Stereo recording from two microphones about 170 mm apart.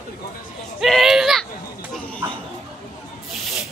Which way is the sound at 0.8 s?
Centre (ahead or behind).